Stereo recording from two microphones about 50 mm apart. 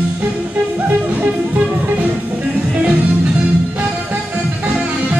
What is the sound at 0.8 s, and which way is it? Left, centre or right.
Music, right.